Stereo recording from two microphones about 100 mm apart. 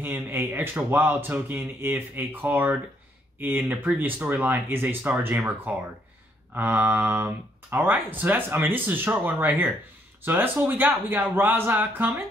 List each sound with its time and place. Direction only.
0.0 s speech: 20° right (ahead or behind)